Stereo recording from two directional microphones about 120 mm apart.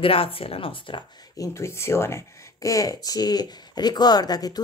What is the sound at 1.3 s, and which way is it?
Speech, 25° left (ahead or behind).